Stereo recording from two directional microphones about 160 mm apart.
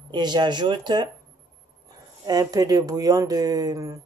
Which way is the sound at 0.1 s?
25° right (ahead or behind).